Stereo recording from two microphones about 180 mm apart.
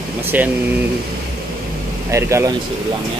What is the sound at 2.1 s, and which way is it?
Speech, 15° right (ahead or behind).